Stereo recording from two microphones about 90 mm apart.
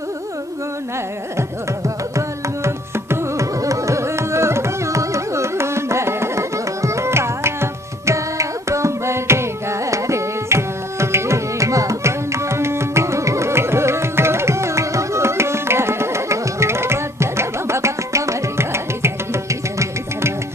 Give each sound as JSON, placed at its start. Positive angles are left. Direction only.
{"t": 2.1, "sound": "carnatic music", "side_deg": -35}